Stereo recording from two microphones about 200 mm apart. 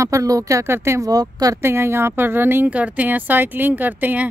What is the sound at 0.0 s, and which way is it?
Speech, 15° right (ahead or behind).